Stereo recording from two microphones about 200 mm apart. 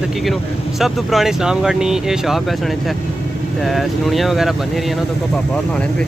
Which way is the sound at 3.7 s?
Centre (ahead or behind).